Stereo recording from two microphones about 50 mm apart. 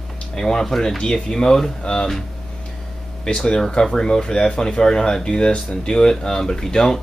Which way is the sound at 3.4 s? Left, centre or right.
Centre.